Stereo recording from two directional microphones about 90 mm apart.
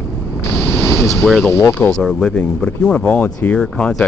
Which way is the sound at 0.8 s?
30° left (ahead or behind).